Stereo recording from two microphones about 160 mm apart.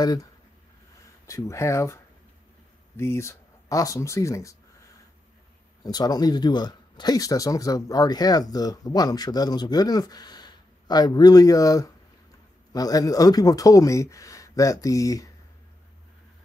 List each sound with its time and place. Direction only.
0.0 s speech: 25° left (ahead or behind)
3.0 s speech: 15° left (ahead or behind)
5.9 s speech: 25° left (ahead or behind)